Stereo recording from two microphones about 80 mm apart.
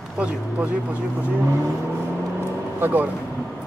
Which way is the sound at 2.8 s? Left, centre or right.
Right.